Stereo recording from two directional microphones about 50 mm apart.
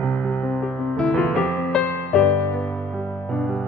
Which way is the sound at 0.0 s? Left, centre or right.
Left.